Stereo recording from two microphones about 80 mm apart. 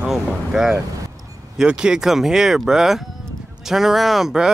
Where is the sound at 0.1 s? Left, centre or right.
Centre.